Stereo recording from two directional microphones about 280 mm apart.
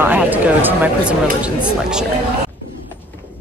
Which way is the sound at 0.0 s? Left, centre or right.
Centre.